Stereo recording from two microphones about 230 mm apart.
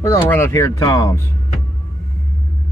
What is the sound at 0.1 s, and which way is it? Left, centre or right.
Speech, centre.